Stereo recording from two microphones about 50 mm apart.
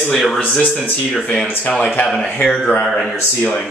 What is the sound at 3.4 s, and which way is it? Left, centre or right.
Speech, left.